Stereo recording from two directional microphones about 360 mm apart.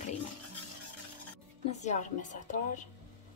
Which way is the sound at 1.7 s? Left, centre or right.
Centre.